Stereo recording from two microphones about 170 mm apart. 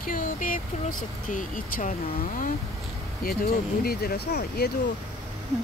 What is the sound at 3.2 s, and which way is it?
Speech, 65° left (ahead or behind).